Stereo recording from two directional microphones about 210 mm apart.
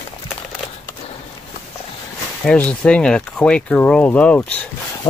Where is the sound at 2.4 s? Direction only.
5° left (ahead or behind).